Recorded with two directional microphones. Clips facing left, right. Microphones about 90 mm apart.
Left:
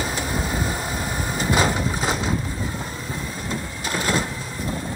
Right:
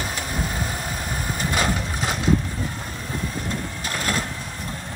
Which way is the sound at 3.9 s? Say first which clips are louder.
Left 3 dB; 20° left (ahead or behind).